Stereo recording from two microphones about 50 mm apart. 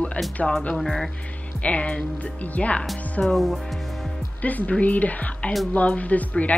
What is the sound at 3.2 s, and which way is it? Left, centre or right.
Speech, centre.